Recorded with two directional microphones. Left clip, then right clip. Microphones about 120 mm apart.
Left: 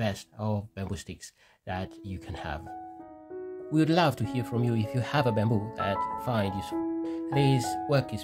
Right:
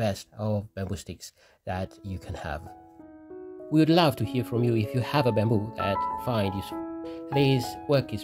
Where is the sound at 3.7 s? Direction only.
30° right (ahead or behind).